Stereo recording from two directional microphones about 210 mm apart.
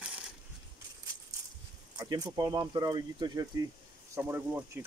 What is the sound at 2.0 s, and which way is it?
Speech, 20° right (ahead or behind).